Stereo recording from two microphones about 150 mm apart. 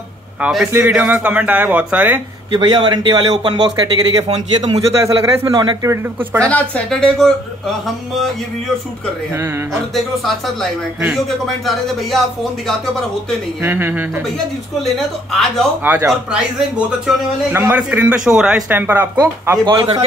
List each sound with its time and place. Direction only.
0.4 s a man's voice: 5° right (ahead or behind)
2.5 s speech: 30° right (ahead or behind)
6.5 s a woman's voice: 5° left (ahead or behind)
9.9 s a woman's voice: centre (ahead or behind)
13.6 s a man's voice: 15° right (ahead or behind)
15.3 s a woman's voice: centre (ahead or behind)
15.8 s a man's voice: 15° right (ahead or behind)
19.6 s speech: 35° right (ahead or behind)